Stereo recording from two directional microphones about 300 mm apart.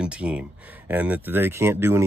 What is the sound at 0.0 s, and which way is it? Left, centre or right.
Speech, centre.